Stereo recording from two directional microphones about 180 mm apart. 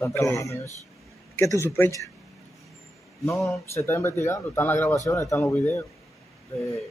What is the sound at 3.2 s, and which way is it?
Speech, 15° left (ahead or behind).